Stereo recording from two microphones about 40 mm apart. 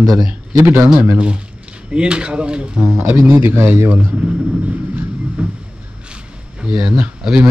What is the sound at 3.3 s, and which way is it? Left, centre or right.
Speech, right.